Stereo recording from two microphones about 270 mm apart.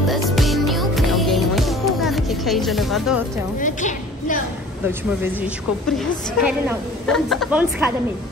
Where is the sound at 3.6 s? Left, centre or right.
Left.